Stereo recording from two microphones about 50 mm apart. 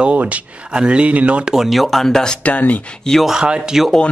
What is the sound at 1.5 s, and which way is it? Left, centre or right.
Speech, centre.